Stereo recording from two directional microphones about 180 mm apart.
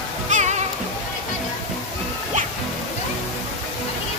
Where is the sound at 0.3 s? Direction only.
40° right (ahead or behind).